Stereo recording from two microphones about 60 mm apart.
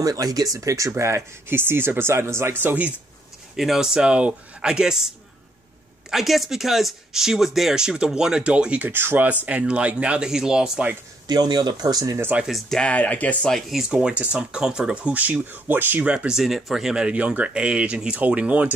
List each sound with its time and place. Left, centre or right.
0.0 s speech: right
1.6 s speech: right
2.5 s speech: right
3.5 s speech: centre
8.8 s speech: right; by 10.7 s centre
11.3 s speech: right
12.6 s speech: centre
12.9 s speech: left
13.5 s speech: centre
14.1 s speech: right
16.1 s speech: centre
16.3 s speech: centre; by 18.7 s right